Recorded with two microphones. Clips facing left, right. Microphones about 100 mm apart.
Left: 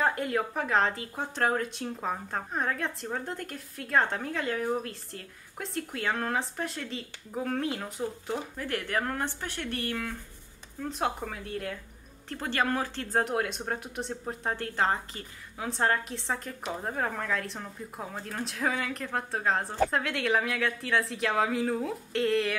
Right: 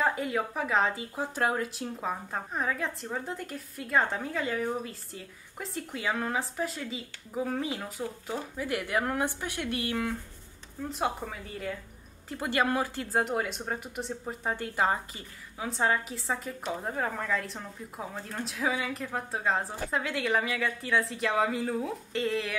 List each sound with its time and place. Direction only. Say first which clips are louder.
0.0 s speech: left 1 dB; centre (ahead or behind); by 10.1 s 15° right (ahead or behind)
10.8 s speech: even; centre (ahead or behind)